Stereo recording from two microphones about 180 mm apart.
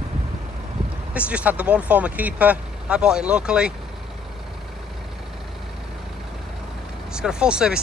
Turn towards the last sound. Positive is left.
turn(degrees=-5)  # may be behind; listen again after turning